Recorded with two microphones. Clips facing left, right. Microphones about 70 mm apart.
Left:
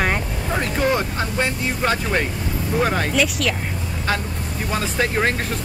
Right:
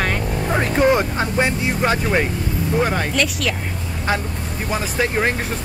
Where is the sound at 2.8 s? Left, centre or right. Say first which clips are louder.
Left 1 dB; centre.